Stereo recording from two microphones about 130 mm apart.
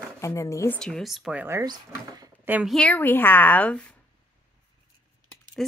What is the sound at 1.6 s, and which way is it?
Speech, 30° right (ahead or behind).